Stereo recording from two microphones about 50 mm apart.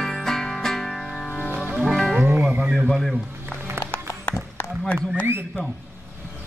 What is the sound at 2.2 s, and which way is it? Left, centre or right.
Music, right.